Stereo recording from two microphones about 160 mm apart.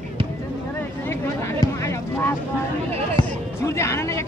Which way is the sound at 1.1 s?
15° left (ahead or behind).